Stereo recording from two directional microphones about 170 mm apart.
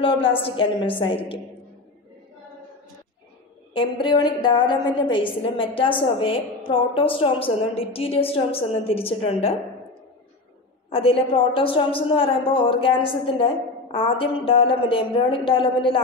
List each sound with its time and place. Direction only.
0.4 s a woman's voice: 30° left (ahead or behind)
3.7 s a woman's voice: 30° left (ahead or behind)
10.9 s a woman's voice: 35° left (ahead or behind)